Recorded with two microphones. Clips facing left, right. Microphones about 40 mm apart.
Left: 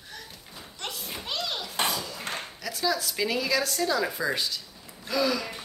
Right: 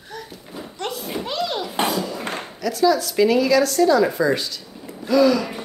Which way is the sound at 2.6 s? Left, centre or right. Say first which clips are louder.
Right 11 dB; centre.